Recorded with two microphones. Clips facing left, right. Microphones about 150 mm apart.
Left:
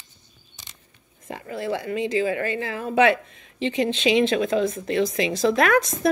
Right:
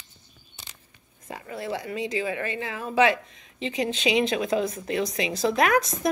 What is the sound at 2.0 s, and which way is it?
Speech, 30° left (ahead or behind).